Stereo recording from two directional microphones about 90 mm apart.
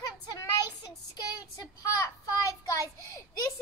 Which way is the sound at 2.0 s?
35° left (ahead or behind).